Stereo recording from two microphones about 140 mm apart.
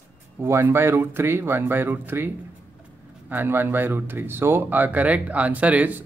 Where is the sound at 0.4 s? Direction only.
15° right (ahead or behind).